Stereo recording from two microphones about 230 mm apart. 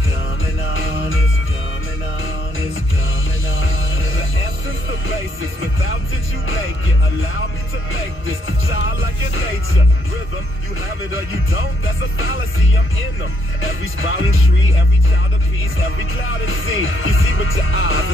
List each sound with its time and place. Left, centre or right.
0.7 s music: left
3.5 s music: left
7.9 s music: left
10.8 s music: left
15.6 s music: left